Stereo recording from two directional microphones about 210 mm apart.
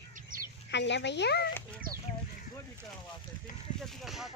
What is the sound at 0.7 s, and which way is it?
Speech, 55° left (ahead or behind).